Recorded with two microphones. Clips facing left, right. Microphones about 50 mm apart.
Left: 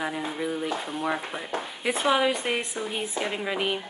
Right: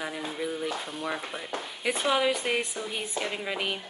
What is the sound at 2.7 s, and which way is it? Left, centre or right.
Speech, left.